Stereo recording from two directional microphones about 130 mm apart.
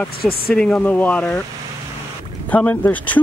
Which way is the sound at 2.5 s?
10° left (ahead or behind).